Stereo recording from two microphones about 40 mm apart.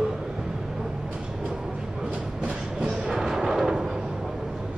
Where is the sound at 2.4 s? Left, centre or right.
Right.